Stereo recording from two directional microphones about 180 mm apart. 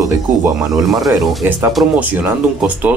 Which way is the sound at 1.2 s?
Centre (ahead or behind).